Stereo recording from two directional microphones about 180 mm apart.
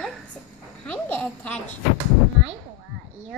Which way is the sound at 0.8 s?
5° left (ahead or behind).